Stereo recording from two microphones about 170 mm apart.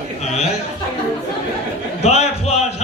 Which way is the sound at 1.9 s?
40° left (ahead or behind).